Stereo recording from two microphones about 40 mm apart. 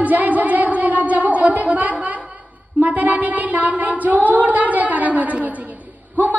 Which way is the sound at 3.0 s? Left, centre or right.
Right.